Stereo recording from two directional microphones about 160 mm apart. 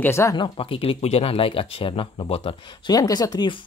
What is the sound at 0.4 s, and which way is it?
Speech, 35° left (ahead or behind).